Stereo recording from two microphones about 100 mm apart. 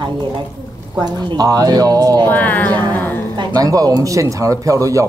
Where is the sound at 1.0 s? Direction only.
40° right (ahead or behind).